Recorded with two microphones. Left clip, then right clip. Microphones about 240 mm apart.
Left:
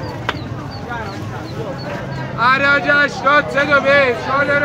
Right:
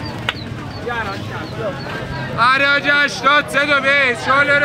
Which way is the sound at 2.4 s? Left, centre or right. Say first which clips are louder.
Even; right.